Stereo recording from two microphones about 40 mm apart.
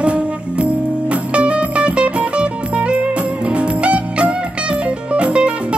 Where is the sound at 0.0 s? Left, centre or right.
Right.